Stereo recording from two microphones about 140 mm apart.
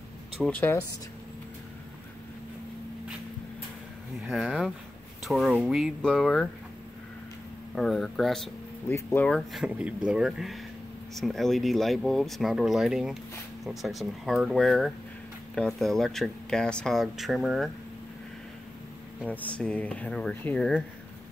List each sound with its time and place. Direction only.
0.5 s speech: 10° left (ahead or behind)
4.2 s speech: centre (ahead or behind)
7.7 s speech: centre (ahead or behind)
8.9 s speech: 15° left (ahead or behind)
9.3 s speech: centre (ahead or behind)
19.2 s speech: 10° left (ahead or behind)